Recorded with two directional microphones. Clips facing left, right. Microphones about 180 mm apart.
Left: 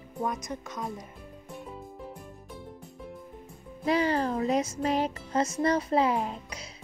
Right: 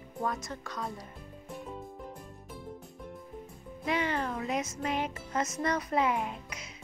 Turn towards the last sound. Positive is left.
turn(degrees=35)  # may be behind; listen again after turning